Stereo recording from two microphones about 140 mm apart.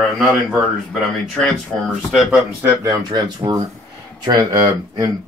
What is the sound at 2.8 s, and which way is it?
Speech, 25° right (ahead or behind).